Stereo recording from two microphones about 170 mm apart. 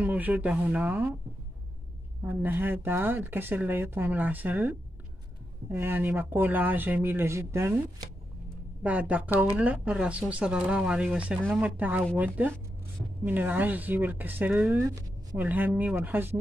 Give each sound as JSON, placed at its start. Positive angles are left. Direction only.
{"t": 0.0, "sound": "speech", "side_deg": -10}
{"t": 2.2, "sound": "speech", "side_deg": -10}